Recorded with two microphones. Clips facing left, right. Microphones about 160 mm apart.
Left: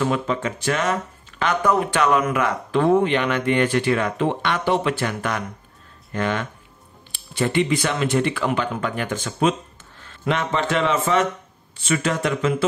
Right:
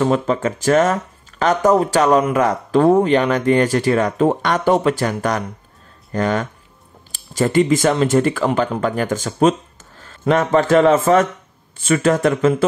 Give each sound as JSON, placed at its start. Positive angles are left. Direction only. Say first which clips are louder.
{"t": 0.0, "sound": "a man's voice", "louder": "right 5 dB", "side_deg": -40}